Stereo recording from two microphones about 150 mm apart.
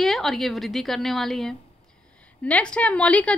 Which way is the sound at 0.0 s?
Centre (ahead or behind).